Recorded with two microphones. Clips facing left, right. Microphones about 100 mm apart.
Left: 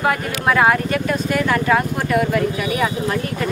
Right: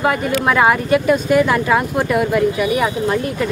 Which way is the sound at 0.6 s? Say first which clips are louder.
Right 2 dB; 10° right (ahead or behind).